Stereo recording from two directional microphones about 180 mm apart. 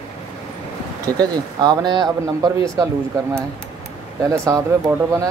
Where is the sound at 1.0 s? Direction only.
20° right (ahead or behind).